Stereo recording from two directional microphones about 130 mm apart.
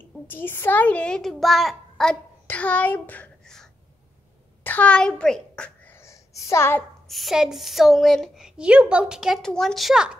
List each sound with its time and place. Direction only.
0.3 s a child's voice: 15° left (ahead or behind)
5.9 s a sound: 25° left (ahead or behind)
7.1 s a woman's voice: centre (ahead or behind)